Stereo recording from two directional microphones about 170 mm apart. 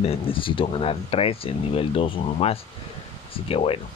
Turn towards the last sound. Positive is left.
turn(degrees=35)  # may be behind; listen again after turning